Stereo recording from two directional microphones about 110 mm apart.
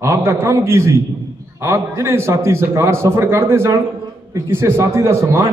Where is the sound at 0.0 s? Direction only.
25° right (ahead or behind).